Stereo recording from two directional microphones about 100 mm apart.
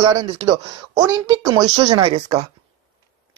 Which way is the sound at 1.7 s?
90° right.